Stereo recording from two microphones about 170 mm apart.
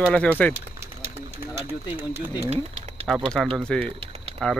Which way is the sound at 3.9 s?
35° right (ahead or behind).